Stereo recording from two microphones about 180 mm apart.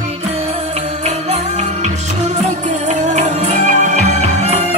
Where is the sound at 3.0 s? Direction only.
40° right (ahead or behind).